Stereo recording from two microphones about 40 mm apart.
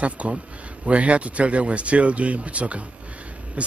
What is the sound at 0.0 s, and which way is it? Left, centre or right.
Speech, right.